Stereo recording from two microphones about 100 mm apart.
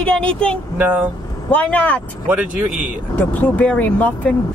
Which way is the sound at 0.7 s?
15° right (ahead or behind).